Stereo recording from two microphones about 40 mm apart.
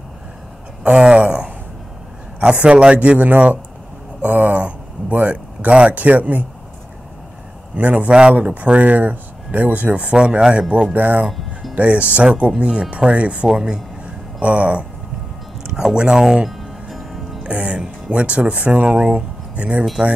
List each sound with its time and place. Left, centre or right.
0.9 s speech: right
2.6 s speech: right
7.7 s speech: right
8.1 s speech: right
8.5 s speech: right
10.1 s speech: right
14.0 s a sound: right
16.0 s speech: centre
16.4 s music: centre
17.4 s speech: right
18.9 s speech: centre
19.1 s speech: right